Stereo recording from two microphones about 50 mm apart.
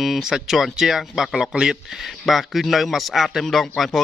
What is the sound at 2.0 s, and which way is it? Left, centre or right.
A man's voice, centre.